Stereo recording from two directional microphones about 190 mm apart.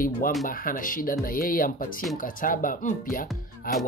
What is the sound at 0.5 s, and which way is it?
Speech, 45° left (ahead or behind).